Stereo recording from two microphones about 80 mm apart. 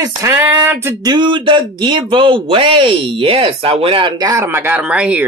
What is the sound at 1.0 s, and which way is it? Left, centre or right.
Speech, right.